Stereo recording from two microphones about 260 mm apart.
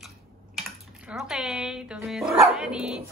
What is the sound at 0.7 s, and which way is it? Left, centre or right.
Speech, centre.